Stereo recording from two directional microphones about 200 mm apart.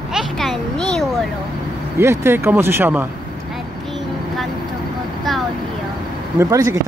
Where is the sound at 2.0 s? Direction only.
15° right (ahead or behind).